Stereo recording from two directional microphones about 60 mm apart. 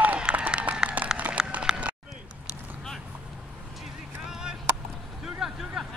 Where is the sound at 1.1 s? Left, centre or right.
Right.